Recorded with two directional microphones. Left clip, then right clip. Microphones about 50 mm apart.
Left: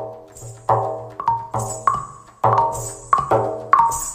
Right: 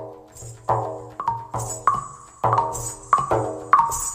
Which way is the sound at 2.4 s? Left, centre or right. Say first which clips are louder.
Left 4 dB; left.